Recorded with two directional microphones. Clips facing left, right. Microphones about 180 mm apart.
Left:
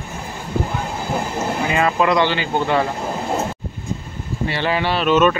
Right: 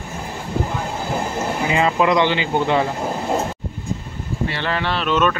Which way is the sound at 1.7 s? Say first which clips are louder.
Right 1 dB; 20° right (ahead or behind).